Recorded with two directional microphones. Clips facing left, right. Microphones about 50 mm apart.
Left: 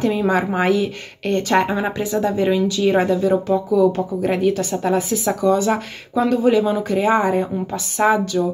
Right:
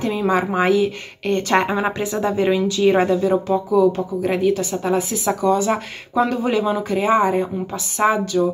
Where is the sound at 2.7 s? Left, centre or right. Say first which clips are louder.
Right 1 dB; right.